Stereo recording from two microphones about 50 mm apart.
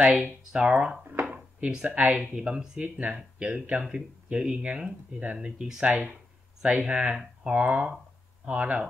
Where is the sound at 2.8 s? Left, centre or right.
Right.